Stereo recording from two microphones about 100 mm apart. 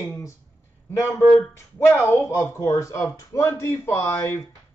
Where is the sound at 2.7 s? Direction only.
35° left (ahead or behind).